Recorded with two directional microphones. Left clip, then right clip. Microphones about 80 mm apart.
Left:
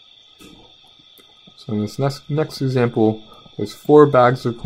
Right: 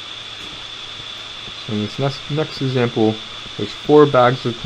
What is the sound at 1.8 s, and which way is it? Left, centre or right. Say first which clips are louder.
Speech: even; left.